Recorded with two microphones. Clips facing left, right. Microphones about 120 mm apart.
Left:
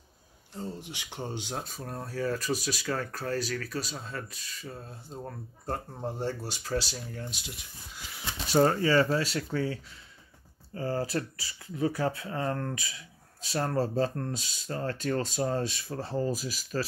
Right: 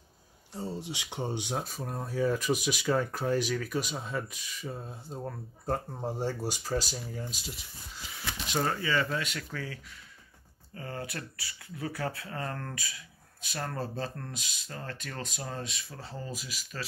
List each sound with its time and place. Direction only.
1.3 s speech: 10° right (ahead or behind)
8.5 s speech: 35° left (ahead or behind)